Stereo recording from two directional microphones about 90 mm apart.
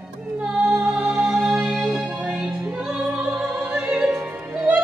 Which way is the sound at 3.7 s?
10° right (ahead or behind).